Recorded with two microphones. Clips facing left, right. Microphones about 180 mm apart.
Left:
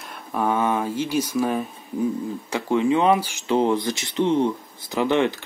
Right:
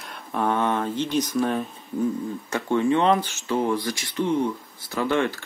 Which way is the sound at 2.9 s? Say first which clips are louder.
Left 1 dB; 5° left (ahead or behind).